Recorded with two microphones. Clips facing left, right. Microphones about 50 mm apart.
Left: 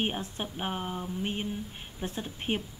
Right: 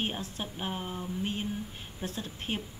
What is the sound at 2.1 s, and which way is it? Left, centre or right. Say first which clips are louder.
Speech: left 3 dB; left.